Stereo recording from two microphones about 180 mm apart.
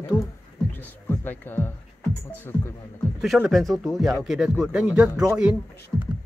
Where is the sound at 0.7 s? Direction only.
10° left (ahead or behind).